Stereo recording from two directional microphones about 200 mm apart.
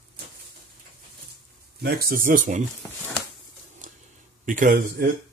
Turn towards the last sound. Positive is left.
turn(degrees=-45)  # may be behind; listen again after turning